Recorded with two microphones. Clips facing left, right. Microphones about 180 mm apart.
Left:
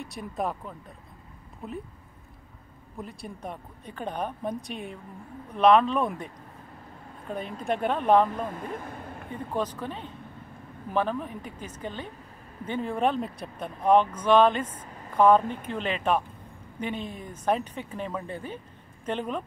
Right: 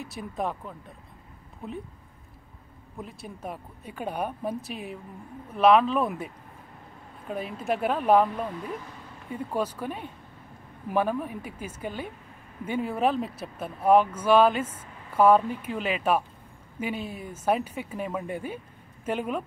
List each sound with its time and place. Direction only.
0.0 s speech: centre (ahead or behind)
3.0 s speech: centre (ahead or behind)
8.5 s speech: 50° left (ahead or behind)
9.3 s speech: 10° right (ahead or behind)